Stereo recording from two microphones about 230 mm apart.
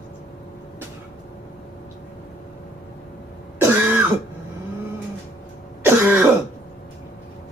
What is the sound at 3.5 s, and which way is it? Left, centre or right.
Throat clearing, centre.